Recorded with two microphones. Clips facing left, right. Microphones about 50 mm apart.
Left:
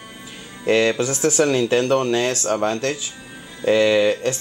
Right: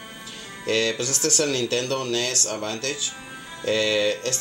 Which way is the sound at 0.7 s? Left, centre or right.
Left.